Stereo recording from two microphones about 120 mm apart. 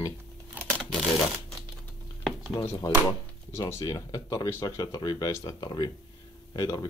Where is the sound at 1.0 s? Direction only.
5° right (ahead or behind).